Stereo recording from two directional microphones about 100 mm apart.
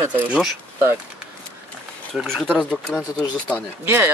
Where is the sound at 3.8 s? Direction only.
25° right (ahead or behind).